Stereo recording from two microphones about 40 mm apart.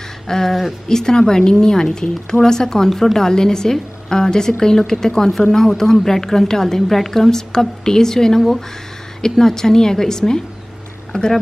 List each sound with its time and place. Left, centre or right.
0.3 s a woman's voice: centre
8.4 s a woman's voice: centre; by 11.3 s left